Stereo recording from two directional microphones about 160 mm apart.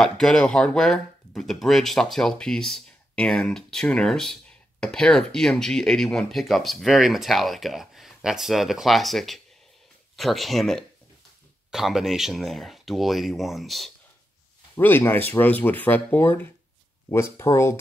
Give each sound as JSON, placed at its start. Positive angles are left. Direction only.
{"t": 0.0, "sound": "speech", "side_deg": 5}
{"t": 14.8, "sound": "speech", "side_deg": 15}